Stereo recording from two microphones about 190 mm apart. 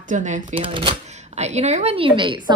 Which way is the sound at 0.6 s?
25° right (ahead or behind).